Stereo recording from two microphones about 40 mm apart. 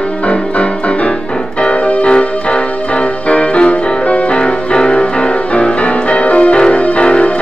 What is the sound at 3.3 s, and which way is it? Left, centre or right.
Music, left.